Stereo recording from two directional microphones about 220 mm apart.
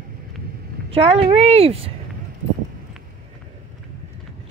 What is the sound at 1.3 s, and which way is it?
Speech, 30° right (ahead or behind).